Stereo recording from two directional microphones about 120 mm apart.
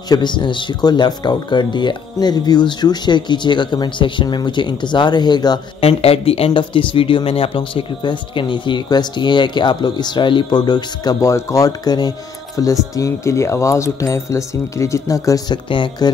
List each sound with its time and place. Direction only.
0.1 s speech: 40° left (ahead or behind)
5.8 s speech: 55° left (ahead or behind)